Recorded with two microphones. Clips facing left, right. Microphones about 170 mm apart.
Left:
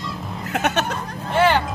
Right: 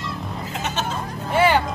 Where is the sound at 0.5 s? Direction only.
65° left (ahead or behind).